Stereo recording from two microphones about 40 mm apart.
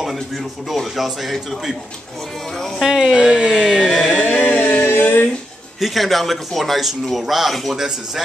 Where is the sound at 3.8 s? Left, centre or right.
Centre.